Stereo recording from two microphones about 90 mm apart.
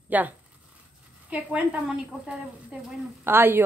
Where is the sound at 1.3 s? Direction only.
15° right (ahead or behind).